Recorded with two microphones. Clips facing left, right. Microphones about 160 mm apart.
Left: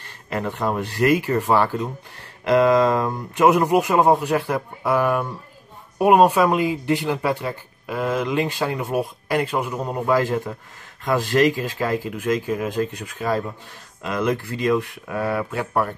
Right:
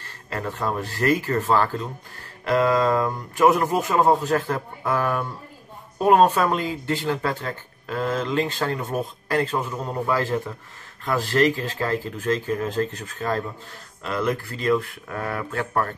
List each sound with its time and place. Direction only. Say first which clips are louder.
0.0 s speech: left 4 dB; 15° left (ahead or behind)